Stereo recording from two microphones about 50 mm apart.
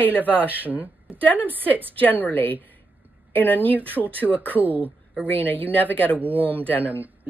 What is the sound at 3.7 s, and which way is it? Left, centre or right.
Speech, right.